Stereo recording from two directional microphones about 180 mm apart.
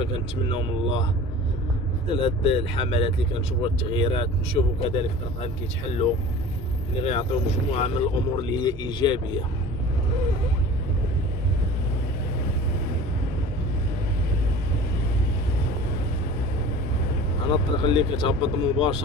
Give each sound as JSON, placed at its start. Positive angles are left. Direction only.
{"t": 0.0, "sound": "speech", "side_deg": 30}
{"t": 2.1, "sound": "speech", "side_deg": 30}
{"t": 17.5, "sound": "speech", "side_deg": 30}